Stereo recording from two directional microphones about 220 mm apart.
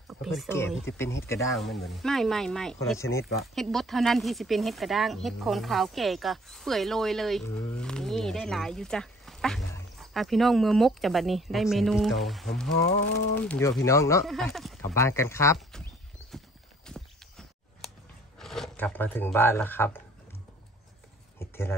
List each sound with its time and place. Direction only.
0.1 s speech: centre (ahead or behind)
0.9 s a man's voice: 10° left (ahead or behind)
1.5 s speech: centre (ahead or behind)
3.0 s a man's voice: 10° left (ahead or behind)
3.3 s a man's voice: centre (ahead or behind)
14.2 s speech: centre (ahead or behind)
14.8 s a man's voice: 10° left (ahead or behind)
15.7 s a sound: centre (ahead or behind)
16.8 s walk: centre (ahead or behind)
18.4 s speech: centre (ahead or behind)
21.4 s a sound: 10° left (ahead or behind)